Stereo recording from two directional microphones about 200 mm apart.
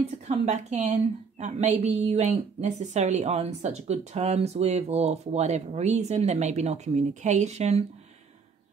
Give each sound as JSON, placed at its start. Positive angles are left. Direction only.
{"t": 0.3, "sound": "a woman's voice", "side_deg": -35}